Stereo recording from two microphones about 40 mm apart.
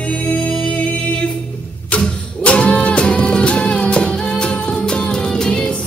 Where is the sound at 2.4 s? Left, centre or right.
Left.